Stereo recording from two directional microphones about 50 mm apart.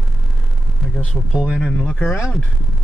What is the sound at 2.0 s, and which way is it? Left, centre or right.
Speech, left.